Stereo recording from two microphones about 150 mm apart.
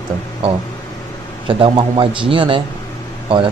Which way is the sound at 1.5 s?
35° right (ahead or behind).